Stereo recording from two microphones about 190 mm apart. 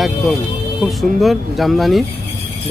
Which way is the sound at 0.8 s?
Centre (ahead or behind).